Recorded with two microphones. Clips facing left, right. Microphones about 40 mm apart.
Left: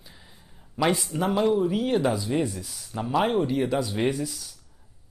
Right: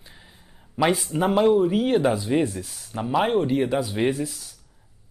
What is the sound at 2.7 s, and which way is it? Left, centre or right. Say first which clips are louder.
Speech: right 2 dB; centre.